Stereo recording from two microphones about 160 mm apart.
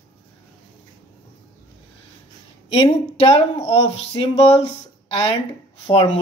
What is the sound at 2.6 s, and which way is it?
Speech, 40° left (ahead or behind).